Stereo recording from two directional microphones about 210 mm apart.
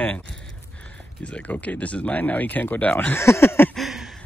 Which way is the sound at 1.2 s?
5° left (ahead or behind).